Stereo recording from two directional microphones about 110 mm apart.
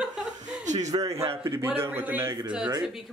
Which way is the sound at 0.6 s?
90° right.